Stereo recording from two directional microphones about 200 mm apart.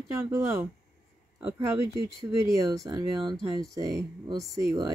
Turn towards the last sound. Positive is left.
turn(degrees=-20)  # may be behind; listen again after turning